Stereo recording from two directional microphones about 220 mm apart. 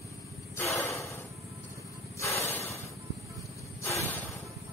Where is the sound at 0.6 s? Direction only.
10° left (ahead or behind).